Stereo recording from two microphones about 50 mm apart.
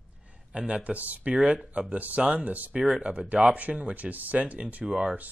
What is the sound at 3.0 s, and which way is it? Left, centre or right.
Speech, right.